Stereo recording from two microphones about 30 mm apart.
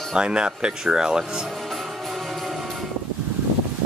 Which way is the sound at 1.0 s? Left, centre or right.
Right.